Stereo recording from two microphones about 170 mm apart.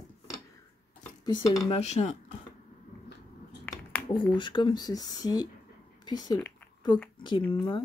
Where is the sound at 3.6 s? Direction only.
10° left (ahead or behind).